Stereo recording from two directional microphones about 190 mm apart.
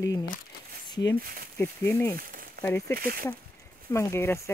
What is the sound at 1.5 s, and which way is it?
Speech, 15° left (ahead or behind).